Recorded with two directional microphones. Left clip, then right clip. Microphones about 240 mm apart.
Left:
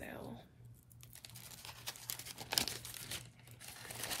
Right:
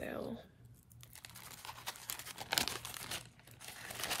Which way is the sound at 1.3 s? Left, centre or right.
Centre.